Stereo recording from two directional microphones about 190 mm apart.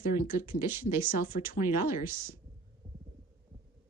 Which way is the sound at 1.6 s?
15° right (ahead or behind).